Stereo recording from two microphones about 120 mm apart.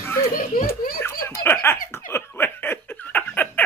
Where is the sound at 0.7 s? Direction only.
20° left (ahead or behind).